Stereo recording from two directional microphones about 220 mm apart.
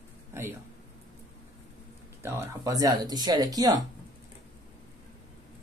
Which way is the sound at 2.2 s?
15° right (ahead or behind).